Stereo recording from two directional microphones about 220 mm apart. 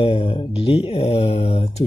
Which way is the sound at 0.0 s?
25° left (ahead or behind).